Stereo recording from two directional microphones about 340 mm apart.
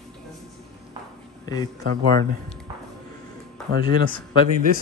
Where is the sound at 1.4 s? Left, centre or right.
Centre.